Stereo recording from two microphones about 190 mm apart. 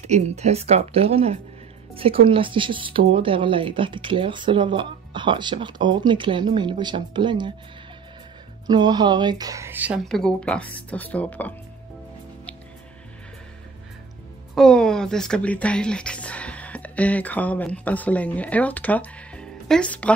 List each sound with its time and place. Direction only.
0.0 s speech: 35° right (ahead or behind)
8.6 s speech: 20° right (ahead or behind)
10.0 s speech: 5° left (ahead or behind)
14.5 s speech: 5° left (ahead or behind)